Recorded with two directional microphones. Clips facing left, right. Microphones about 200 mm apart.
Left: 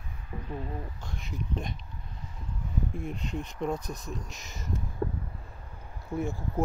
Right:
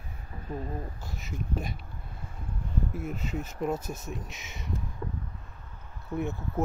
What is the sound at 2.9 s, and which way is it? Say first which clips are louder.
Speech: right 1 dB; 5° right (ahead or behind).